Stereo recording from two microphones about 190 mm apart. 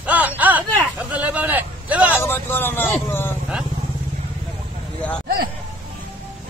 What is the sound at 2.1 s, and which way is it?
A man's voice, 10° left (ahead or behind).